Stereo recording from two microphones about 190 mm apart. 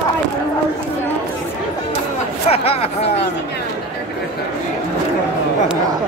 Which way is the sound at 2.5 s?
30° left (ahead or behind).